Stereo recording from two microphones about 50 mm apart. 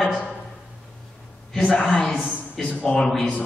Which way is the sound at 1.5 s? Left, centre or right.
Centre.